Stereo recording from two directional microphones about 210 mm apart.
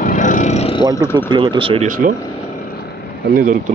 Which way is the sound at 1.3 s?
20° right (ahead or behind).